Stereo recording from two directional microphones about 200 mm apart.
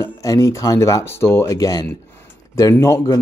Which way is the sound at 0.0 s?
15° left (ahead or behind).